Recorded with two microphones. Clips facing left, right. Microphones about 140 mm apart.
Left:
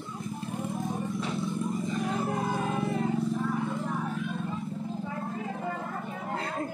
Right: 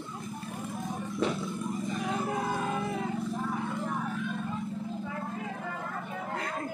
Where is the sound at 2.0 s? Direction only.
Centre (ahead or behind).